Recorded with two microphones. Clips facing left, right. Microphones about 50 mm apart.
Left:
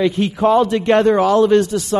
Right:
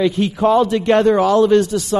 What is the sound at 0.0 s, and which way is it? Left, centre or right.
A man's voice, left.